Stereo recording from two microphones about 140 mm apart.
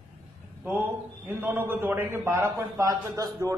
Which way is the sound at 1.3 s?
15° right (ahead or behind).